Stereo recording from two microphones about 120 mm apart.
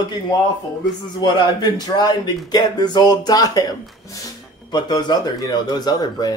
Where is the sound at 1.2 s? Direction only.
35° left (ahead or behind).